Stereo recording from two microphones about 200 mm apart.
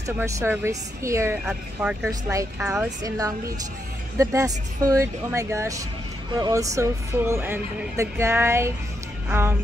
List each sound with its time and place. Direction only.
0.0 s speech: 15° right (ahead or behind)
1.4 s speech: 5° right (ahead or behind)
2.0 s speech: 15° right (ahead or behind)